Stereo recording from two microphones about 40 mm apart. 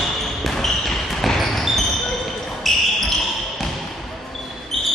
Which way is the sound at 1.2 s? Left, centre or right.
Centre.